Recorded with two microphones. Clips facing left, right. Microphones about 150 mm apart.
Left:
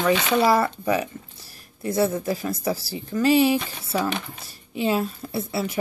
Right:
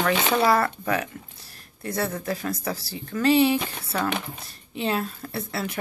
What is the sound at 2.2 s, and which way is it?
Speech, 5° left (ahead or behind).